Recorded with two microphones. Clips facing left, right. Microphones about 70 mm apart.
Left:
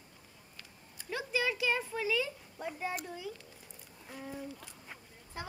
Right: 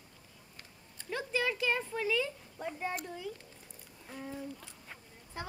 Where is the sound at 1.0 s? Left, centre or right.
Centre.